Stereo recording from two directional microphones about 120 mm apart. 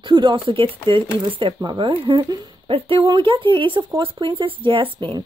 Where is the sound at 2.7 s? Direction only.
50° right (ahead or behind).